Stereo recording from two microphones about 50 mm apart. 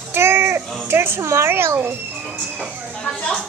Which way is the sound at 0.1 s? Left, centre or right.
Right.